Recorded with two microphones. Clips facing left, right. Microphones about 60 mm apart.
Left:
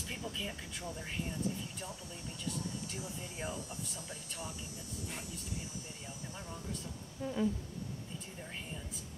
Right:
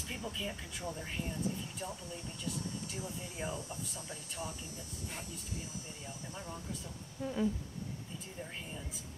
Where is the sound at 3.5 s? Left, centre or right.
Centre.